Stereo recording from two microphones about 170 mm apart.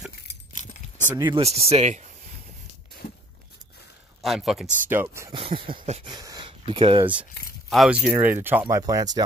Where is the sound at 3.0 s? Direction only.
60° left (ahead or behind).